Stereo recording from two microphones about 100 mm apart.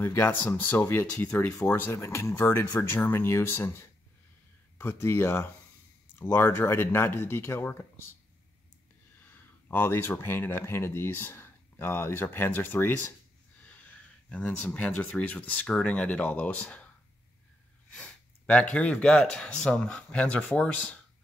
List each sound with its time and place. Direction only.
0.0 s speech: 25° left (ahead or behind)
2.3 s speech: 15° left (ahead or behind)
9.7 s speech: 20° left (ahead or behind)
17.9 s speech: 10° left (ahead or behind)